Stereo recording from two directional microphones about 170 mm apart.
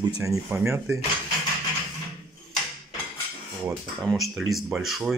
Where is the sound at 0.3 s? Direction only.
10° right (ahead or behind).